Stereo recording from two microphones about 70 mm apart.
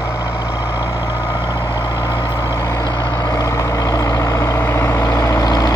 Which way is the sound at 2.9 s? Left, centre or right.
Left.